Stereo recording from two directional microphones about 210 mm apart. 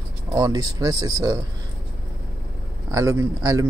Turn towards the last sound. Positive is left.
turn(degrees=-15)  # may be behind; listen again after turning